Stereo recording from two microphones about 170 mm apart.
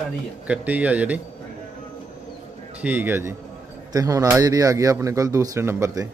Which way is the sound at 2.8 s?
10° right (ahead or behind).